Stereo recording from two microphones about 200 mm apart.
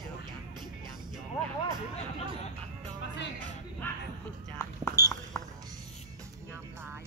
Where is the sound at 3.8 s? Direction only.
10° left (ahead or behind).